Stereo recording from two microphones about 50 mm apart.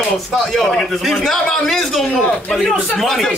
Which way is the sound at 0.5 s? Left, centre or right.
Centre.